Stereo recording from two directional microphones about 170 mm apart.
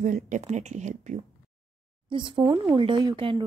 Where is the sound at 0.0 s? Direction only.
45° right (ahead or behind).